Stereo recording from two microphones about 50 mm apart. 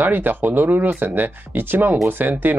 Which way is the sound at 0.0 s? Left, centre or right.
Right.